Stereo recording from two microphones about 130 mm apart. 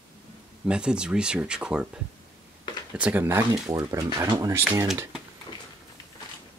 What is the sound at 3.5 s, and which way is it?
Speech, 30° right (ahead or behind).